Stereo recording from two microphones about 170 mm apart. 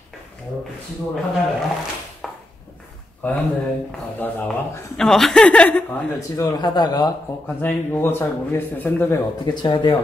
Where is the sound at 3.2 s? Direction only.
10° left (ahead or behind).